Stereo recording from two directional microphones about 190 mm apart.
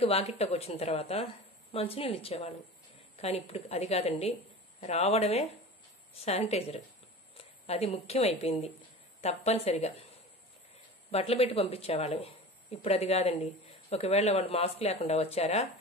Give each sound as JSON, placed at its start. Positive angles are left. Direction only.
{"t": 0.0, "sound": "speech", "side_deg": 30}
{"t": 11.1, "sound": "speech", "side_deg": 30}